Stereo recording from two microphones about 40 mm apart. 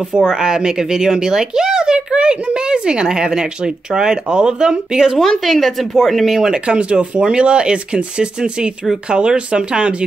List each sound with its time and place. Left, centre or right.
0.1 s speech: centre
5.4 s speech: centre
6.5 s speech: right